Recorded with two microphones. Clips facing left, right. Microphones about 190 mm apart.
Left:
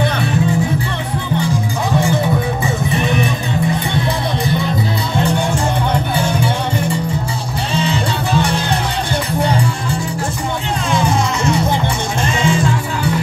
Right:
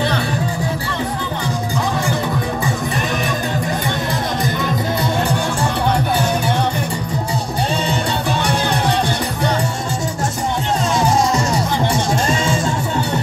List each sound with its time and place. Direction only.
7.7 s music: 60° right (ahead or behind)
12.4 s music: 45° right (ahead or behind)